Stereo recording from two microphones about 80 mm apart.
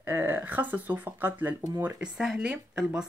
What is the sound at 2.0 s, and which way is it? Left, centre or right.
Speech, centre.